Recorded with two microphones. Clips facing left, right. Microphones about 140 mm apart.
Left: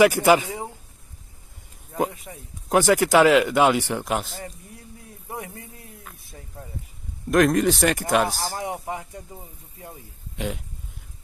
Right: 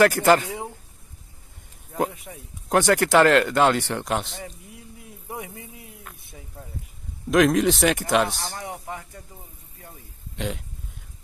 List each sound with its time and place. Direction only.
0.0 s speech: 10° left (ahead or behind)
1.9 s speech: centre (ahead or behind)
5.3 s a sound: centre (ahead or behind)
6.6 s speech: centre (ahead or behind)
8.7 s speech: 20° left (ahead or behind)
10.3 s speech: 5° left (ahead or behind)